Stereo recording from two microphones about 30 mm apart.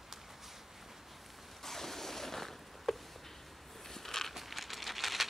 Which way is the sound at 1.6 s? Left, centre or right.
Centre.